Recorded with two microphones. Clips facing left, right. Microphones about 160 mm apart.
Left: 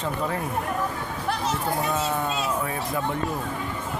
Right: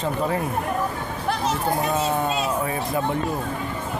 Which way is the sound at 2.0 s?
20° right (ahead or behind).